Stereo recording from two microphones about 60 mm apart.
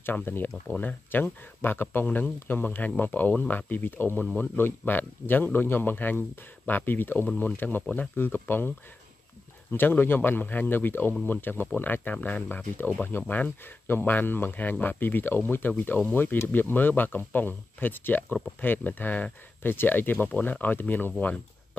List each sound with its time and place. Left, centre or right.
0.0 s a man's voice: left